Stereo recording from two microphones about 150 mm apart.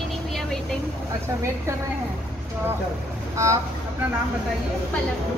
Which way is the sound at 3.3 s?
20° right (ahead or behind).